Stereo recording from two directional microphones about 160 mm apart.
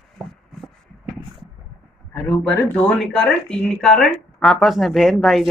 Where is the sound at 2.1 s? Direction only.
10° left (ahead or behind).